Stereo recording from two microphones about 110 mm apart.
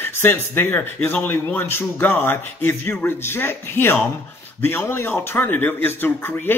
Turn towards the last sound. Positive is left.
turn(degrees=20)  # may be behind; listen again after turning